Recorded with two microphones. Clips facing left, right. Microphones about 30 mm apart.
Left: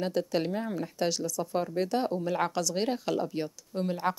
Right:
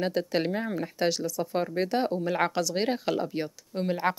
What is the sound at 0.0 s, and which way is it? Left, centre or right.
Speech, right.